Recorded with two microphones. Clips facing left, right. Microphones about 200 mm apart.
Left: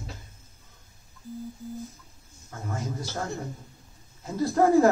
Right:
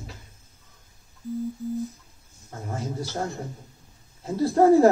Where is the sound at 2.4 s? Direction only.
30° right (ahead or behind).